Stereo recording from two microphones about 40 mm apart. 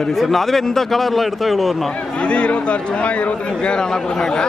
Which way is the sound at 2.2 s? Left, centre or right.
Left.